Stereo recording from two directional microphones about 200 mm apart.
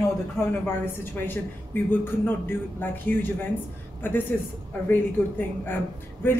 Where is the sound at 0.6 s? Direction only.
10° left (ahead or behind).